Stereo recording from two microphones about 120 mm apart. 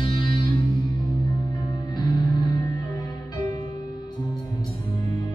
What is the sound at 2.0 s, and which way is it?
Music, 35° left (ahead or behind).